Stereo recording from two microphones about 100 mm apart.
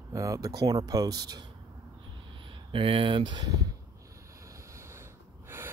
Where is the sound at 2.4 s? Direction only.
60° right (ahead or behind); by 3.6 s 45° right (ahead or behind).